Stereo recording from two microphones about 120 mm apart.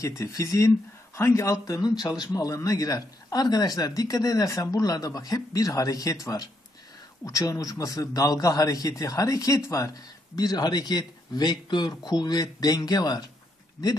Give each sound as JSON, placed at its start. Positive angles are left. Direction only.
{"t": 0.0, "sound": "speech", "side_deg": 25}